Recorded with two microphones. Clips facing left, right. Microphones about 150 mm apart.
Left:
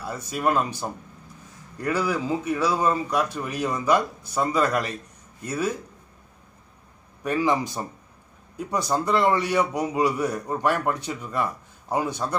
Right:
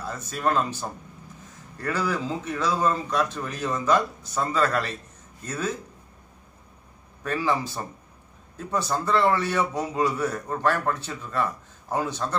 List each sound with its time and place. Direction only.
0.0 s a man's voice: 10° left (ahead or behind)
7.2 s a man's voice: 15° left (ahead or behind)